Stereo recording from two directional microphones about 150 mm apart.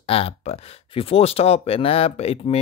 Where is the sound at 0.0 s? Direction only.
40° left (ahead or behind).